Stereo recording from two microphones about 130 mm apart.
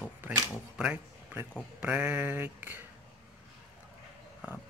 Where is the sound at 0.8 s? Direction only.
10° right (ahead or behind).